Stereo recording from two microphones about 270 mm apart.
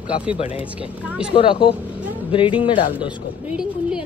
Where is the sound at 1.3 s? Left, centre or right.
Centre.